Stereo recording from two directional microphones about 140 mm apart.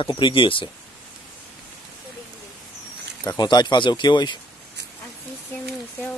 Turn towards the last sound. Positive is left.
turn(degrees=35)  # may be behind; listen again after turning